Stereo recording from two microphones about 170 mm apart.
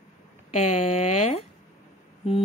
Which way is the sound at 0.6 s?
40° left (ahead or behind).